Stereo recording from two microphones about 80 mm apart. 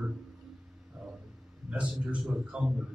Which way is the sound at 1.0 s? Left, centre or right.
Centre.